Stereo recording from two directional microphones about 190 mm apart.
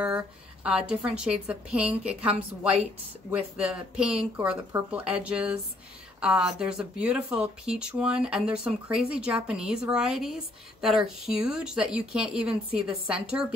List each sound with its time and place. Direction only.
0.7 s a woman's voice: 5° right (ahead or behind)